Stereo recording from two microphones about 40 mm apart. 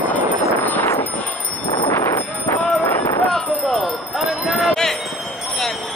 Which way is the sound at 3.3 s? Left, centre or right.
Centre.